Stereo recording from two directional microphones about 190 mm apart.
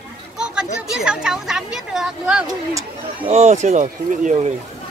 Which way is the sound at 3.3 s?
35° right (ahead or behind).